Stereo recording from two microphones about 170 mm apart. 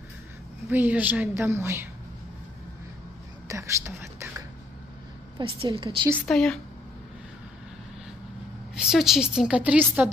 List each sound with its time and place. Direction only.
0.7 s a woman's voice: 10° right (ahead or behind)
3.4 s whispering: 15° right (ahead or behind)
5.4 s a woman's voice: 30° right (ahead or behind)
6.1 s a woman's voice: 5° left (ahead or behind)
8.7 s a woman's voice: 5° right (ahead or behind)